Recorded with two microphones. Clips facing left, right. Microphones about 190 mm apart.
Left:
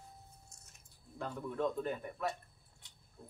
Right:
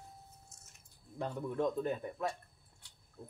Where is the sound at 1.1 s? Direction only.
20° right (ahead or behind).